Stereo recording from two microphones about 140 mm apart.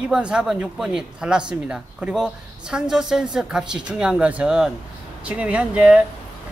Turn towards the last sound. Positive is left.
turn(degrees=-10)  # may be behind; listen again after turning